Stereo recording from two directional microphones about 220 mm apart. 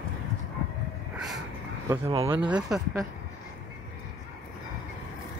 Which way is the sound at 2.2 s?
10° right (ahead or behind).